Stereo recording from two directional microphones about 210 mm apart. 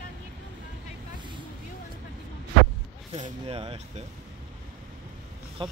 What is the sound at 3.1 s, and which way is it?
Speech, 30° right (ahead or behind).